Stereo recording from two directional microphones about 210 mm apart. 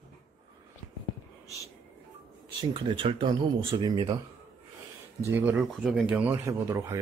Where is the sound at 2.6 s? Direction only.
25° right (ahead or behind).